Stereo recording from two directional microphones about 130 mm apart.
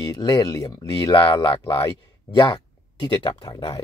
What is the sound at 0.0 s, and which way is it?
Speech, 35° left (ahead or behind).